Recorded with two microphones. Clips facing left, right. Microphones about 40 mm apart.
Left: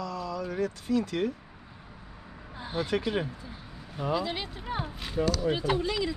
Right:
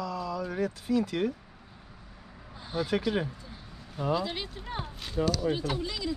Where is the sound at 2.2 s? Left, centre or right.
Centre.